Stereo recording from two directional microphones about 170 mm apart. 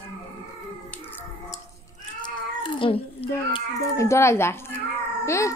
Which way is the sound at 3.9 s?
15° left (ahead or behind).